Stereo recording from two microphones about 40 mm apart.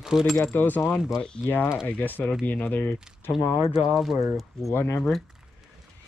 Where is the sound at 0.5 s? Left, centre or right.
Left.